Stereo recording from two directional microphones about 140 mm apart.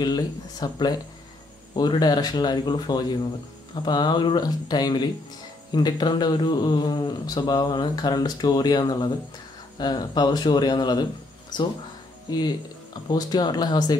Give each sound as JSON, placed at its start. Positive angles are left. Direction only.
{"t": 0.0, "sound": "speech", "side_deg": 25}